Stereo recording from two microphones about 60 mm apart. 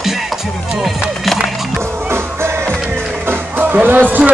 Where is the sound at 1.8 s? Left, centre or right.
Right.